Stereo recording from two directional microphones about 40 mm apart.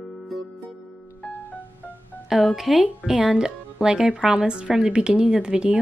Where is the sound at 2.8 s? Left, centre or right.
Right.